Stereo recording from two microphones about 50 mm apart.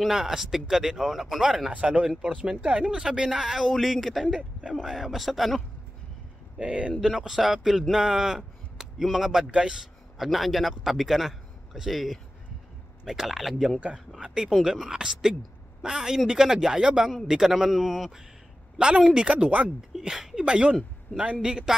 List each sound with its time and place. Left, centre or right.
0.1 s speech: centre
1.7 s speech: right; by 4.3 s centre
4.3 s speech: centre
4.8 s a man's voice: centre
6.6 s speech: right
7.0 s speech: centre
9.5 s speech: centre
10.1 s a man's voice: centre
18.8 s speech: centre
19.9 s speech: centre